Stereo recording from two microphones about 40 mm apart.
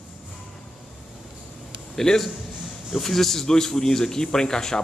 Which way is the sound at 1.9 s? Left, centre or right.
Centre.